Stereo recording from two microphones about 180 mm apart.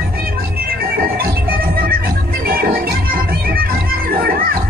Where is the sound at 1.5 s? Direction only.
55° right (ahead or behind).